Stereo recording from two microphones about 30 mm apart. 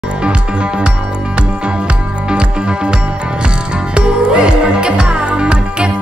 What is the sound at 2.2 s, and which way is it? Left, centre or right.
Music, right.